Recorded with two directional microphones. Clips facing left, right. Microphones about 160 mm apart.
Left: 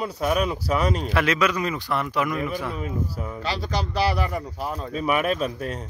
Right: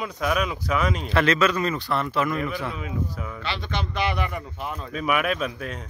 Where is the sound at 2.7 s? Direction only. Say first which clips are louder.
Left 2 dB; 35° left (ahead or behind).